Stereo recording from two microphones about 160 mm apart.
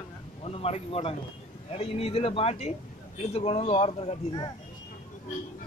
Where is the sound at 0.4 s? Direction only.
40° left (ahead or behind).